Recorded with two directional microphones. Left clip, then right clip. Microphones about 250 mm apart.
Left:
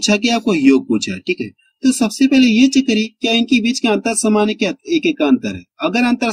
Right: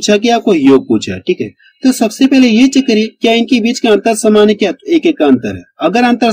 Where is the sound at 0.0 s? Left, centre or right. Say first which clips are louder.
Right 6 dB; left.